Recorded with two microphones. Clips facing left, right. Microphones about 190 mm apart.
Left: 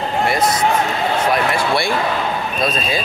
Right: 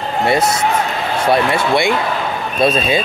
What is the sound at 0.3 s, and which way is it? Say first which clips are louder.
Speech: right 4 dB; 25° right (ahead or behind).